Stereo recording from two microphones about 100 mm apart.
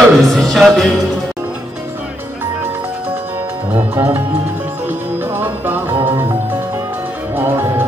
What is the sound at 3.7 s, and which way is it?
Music, 25° right (ahead or behind).